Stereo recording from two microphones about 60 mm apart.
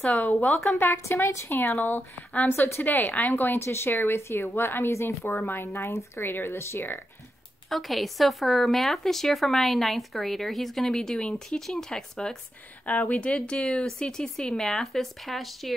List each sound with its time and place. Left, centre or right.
0.3 s a woman's voice: left
0.7 s a woman's voice: left
1.8 s speech: left
3.6 s speech: left
7.7 s speech: centre